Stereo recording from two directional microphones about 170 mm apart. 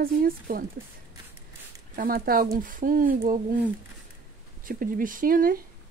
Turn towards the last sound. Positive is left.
turn(degrees=-55)  # may be behind; listen again after turning